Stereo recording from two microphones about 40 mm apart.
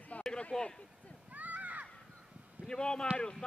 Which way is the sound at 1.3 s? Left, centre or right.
Right.